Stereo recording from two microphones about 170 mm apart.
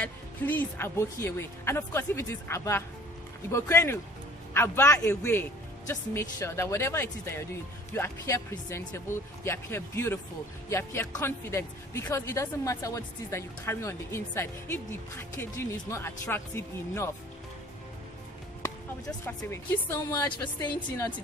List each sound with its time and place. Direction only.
0.0 s speech: 10° left (ahead or behind)
18.6 s speech: 15° left (ahead or behind)